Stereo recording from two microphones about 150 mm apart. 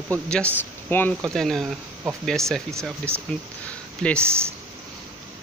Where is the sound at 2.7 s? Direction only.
15° right (ahead or behind).